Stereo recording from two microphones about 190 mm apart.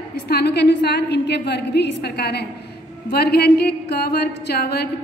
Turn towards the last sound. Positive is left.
turn(degrees=60)  # may be behind; listen again after turning